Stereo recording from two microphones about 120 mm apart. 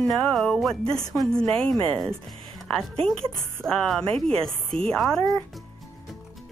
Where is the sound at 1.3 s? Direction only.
5° left (ahead or behind).